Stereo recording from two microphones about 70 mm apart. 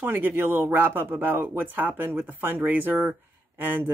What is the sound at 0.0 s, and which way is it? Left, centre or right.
Speech, right.